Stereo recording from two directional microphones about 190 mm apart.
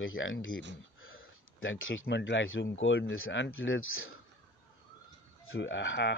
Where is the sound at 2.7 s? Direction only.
90° left.